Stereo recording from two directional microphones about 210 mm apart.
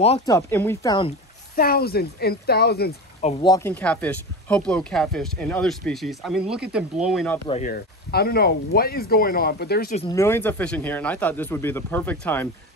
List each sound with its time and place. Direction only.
0.2 s speech: 15° left (ahead or behind)
1.5 s speech: 45° left (ahead or behind)
3.4 s speech: 15° left (ahead or behind); by 7.2 s 5° right (ahead or behind)
7.4 s speech: 30° left (ahead or behind)
7.7 s speech: 50° left (ahead or behind)
10.1 s speech: 10° left (ahead or behind)